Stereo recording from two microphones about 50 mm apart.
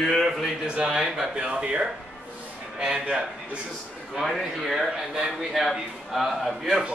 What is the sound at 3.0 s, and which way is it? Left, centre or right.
Speech, right.